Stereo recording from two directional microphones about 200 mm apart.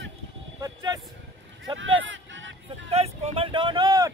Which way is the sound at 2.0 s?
70° right (ahead or behind).